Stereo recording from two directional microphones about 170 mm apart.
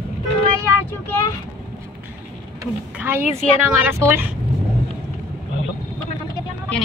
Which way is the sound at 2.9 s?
10° right (ahead or behind).